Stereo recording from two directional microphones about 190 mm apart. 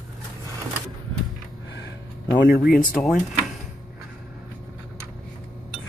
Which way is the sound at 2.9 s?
Centre (ahead or behind).